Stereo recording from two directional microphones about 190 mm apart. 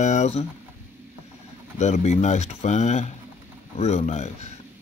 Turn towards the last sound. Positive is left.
turn(degrees=40)  # may be behind; listen again after turning